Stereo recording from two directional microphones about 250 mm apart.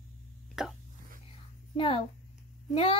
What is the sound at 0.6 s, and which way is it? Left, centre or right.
Speech, centre.